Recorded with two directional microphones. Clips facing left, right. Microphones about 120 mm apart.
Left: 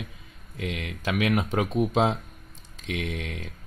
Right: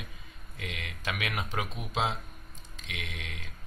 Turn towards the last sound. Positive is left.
turn(degrees=45)  # may be behind; listen again after turning